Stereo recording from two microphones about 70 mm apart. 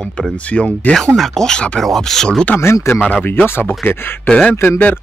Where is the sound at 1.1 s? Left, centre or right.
Centre.